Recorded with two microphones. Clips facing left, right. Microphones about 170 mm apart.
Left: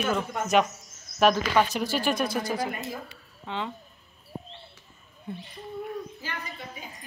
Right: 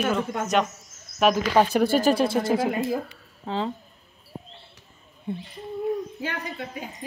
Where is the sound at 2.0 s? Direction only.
30° right (ahead or behind).